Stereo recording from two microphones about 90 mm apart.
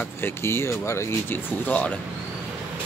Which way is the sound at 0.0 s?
25° left (ahead or behind).